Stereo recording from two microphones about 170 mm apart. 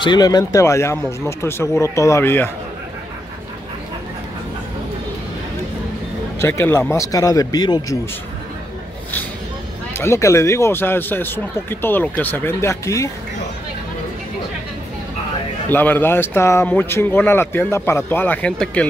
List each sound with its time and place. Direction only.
0.0 s a man's voice: 25° left (ahead or behind)
6.4 s speech: 15° left (ahead or behind)
9.9 s a man's voice: 15° left (ahead or behind)
15.7 s a man's voice: 10° left (ahead or behind)